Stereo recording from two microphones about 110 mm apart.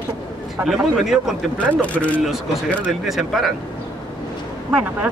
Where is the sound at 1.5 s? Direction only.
15° left (ahead or behind).